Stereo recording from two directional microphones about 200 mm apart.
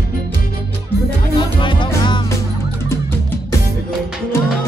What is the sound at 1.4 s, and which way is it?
Music, 25° left (ahead or behind).